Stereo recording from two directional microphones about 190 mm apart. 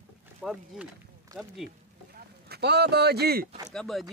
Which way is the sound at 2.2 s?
55° right (ahead or behind).